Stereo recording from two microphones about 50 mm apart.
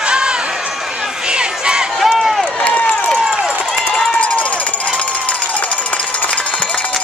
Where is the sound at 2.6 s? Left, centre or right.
Left.